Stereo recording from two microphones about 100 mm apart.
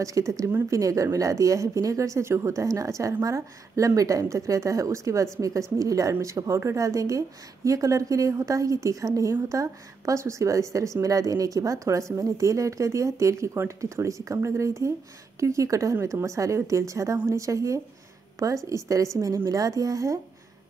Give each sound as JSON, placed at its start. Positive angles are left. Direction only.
{"t": 0.0, "sound": "speech", "side_deg": -35}